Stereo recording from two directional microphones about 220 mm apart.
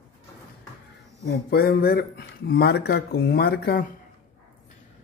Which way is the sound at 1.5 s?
45° left (ahead or behind).